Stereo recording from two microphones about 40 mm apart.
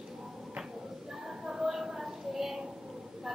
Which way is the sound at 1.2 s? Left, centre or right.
Centre.